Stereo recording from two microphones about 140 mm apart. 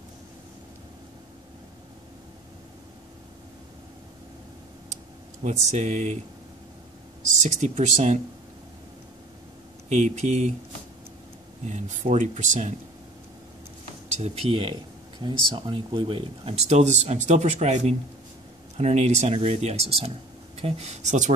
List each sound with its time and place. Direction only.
5.4 s speech: 55° right (ahead or behind)
7.4 s speech: 60° right (ahead or behind)
9.8 s speech: 55° right (ahead or behind)
11.6 s speech: 55° right (ahead or behind)
14.2 s speech: 45° right (ahead or behind)